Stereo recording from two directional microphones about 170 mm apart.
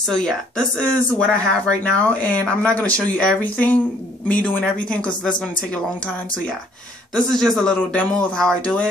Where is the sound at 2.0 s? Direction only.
10° left (ahead or behind).